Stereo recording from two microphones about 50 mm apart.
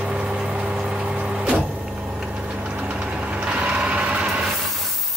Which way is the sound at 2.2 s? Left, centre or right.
Centre.